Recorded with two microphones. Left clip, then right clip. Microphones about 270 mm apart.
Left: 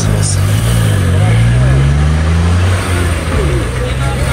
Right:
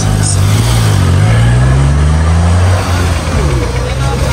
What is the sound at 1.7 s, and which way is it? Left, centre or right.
Vehicle, right.